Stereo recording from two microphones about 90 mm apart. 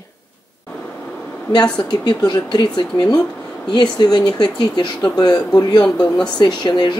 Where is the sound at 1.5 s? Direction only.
50° left (ahead or behind).